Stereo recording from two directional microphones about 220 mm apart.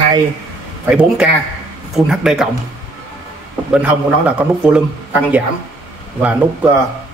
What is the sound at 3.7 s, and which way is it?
A man's voice, 5° right (ahead or behind).